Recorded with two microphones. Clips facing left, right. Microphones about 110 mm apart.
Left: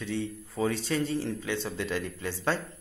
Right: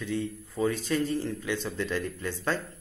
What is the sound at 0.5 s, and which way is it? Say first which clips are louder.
Speech: right 1 dB; 20° left (ahead or behind).